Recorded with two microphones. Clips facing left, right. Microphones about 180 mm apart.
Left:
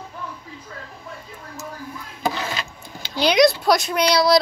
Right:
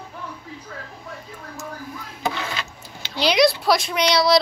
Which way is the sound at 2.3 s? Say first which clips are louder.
Left 1 dB; 35° left (ahead or behind).